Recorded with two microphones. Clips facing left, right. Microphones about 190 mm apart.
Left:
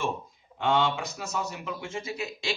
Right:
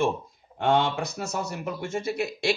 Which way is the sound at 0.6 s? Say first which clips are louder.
Right 2 dB; 55° right (ahead or behind).